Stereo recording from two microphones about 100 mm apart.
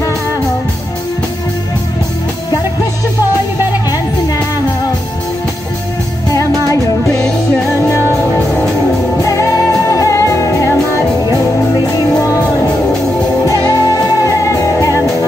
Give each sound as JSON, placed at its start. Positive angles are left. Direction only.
{"t": 6.3, "sound": "music", "side_deg": 30}
{"t": 9.2, "sound": "music", "side_deg": 30}
{"t": 13.5, "sound": "music", "side_deg": 35}